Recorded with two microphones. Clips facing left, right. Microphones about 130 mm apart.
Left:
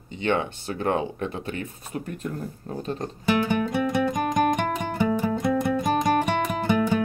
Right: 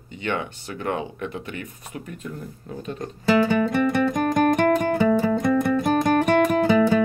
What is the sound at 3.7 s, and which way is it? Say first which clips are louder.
Music: right 3 dB; 5° left (ahead or behind).